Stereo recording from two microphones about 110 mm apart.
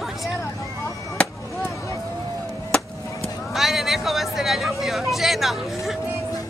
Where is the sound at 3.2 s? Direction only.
30° left (ahead or behind).